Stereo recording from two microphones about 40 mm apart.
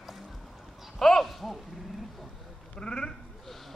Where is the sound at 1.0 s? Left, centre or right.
Centre.